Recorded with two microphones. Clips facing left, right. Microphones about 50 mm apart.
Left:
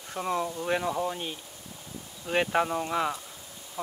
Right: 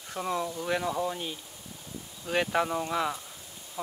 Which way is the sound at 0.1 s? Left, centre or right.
Centre.